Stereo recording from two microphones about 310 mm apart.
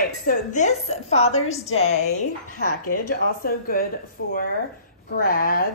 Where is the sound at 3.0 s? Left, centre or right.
Left.